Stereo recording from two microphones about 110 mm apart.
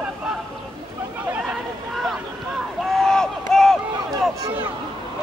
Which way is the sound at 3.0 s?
5° left (ahead or behind).